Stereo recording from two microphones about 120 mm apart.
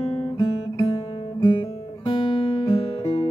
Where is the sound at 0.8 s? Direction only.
45° left (ahead or behind).